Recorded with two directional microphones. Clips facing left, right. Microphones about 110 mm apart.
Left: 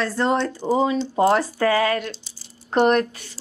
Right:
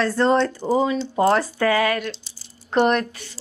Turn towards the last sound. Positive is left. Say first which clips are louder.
# left 1 dB
turn(degrees=40)  # may be behind; listen again after turning